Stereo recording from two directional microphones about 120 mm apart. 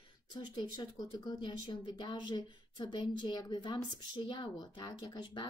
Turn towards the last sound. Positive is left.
turn(degrees=40)  # may be behind; listen again after turning